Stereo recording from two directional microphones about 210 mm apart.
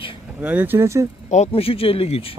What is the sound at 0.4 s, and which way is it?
Speech, 10° right (ahead or behind).